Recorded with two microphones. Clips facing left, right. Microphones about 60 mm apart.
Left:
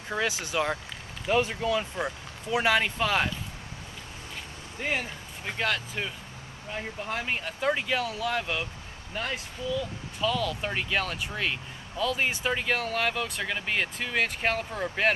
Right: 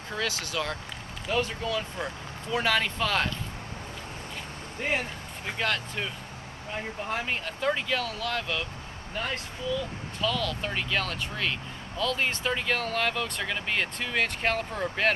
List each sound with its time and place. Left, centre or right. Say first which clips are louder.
0.1 s speech: left 3 dB; centre
5.5 s speech: even; centre
7.2 s speech: left 2 dB; centre